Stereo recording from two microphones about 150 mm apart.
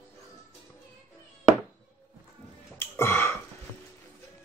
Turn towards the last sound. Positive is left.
turn(degrees=15)  # may be behind; listen again after turning